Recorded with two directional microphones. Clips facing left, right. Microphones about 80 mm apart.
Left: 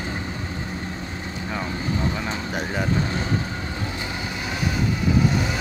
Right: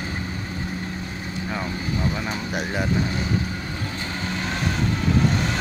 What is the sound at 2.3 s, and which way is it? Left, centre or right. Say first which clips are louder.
Speech: even; centre.